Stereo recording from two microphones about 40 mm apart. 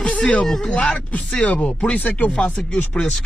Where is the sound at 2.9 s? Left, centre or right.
Centre.